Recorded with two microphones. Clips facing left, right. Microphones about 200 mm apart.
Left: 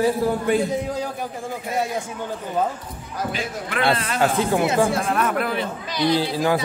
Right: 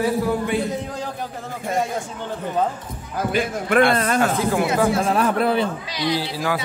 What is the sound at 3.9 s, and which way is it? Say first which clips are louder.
Speech: right 3 dB; 50° right (ahead or behind).